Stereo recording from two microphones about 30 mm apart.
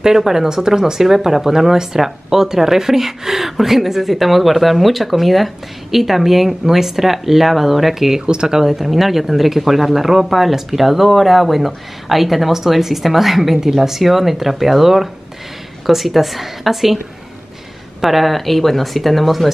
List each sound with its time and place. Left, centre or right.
0.0 s speech: centre
18.0 s speech: centre